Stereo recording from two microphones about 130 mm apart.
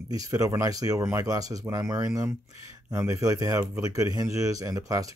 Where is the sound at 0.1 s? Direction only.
25° right (ahead or behind).